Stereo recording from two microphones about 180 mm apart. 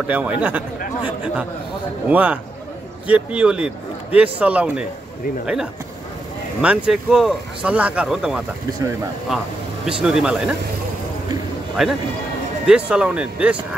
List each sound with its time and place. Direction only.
0.0 s a man's voice: 5° right (ahead or behind)
6.6 s speech: 5° right (ahead or behind)
11.8 s speech: 5° right (ahead or behind)